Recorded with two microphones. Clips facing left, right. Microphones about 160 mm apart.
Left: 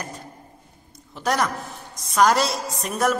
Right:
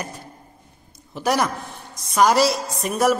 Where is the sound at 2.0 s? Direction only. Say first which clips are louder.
Right 2 dB; 5° right (ahead or behind).